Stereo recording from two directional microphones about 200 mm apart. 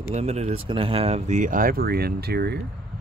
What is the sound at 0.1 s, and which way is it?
Speech, 30° right (ahead or behind).